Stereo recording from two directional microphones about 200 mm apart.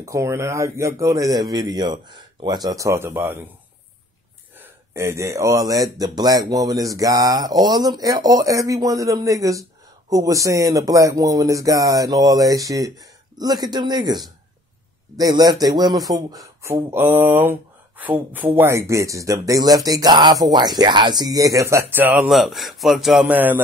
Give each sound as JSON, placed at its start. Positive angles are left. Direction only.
{"t": 0.0, "sound": "speech", "side_deg": -15}
{"t": 4.6, "sound": "a man's voice", "side_deg": -15}